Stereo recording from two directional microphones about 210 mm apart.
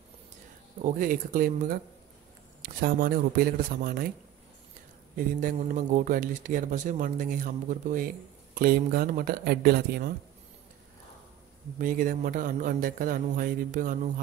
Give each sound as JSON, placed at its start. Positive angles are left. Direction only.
{"t": 0.8, "sound": "speech", "side_deg": -40}
{"t": 5.1, "sound": "a man's voice", "side_deg": -40}
{"t": 11.8, "sound": "a man's voice", "side_deg": -40}